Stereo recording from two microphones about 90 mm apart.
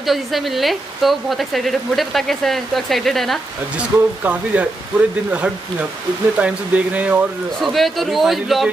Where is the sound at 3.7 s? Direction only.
15° right (ahead or behind).